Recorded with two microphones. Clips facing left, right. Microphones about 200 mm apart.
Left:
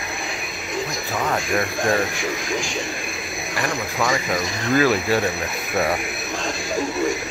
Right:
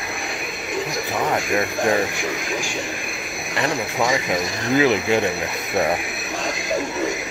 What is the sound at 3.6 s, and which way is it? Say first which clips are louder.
Speech: right 3 dB; 20° right (ahead or behind).